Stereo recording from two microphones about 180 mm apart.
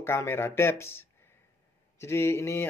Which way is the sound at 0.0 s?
15° left (ahead or behind).